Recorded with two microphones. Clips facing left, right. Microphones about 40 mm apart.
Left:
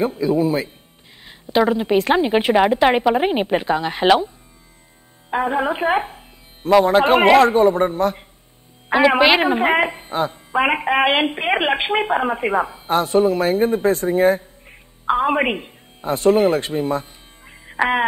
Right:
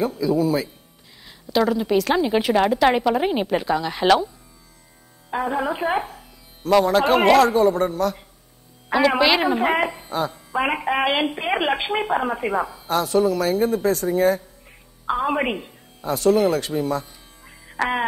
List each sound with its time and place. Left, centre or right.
0.0 s a woman's voice: left
5.3 s music: left
6.7 s a woman's voice: left